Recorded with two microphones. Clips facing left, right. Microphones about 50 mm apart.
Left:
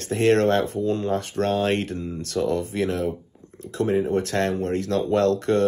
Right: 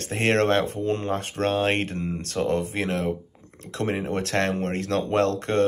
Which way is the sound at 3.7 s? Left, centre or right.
Right.